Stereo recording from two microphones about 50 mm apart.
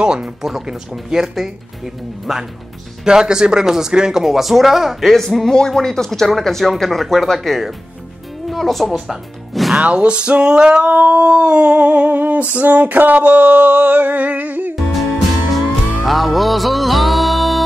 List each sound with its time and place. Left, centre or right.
0.0 s speech: centre
3.1 s speech: centre
9.8 s humming: right
12.1 s a sound: right
16.1 s music: centre